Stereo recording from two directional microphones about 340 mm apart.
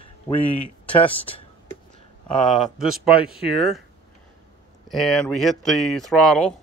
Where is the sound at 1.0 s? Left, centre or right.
Centre.